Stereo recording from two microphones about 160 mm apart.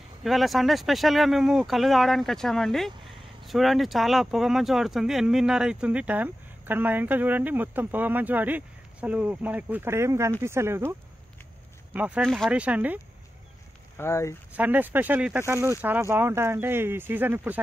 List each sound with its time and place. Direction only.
0.2 s speech: centre (ahead or behind)
13.9 s speech: 15° left (ahead or behind)
14.5 s speech: 10° right (ahead or behind)